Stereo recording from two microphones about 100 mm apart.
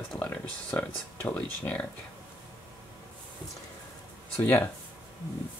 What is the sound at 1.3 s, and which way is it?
Speech, 10° left (ahead or behind).